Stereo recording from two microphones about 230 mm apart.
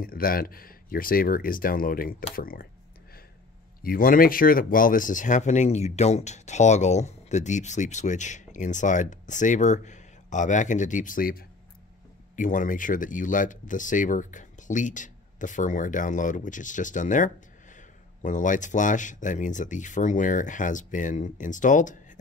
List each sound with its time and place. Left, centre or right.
0.0 s speech: left
3.8 s speech: left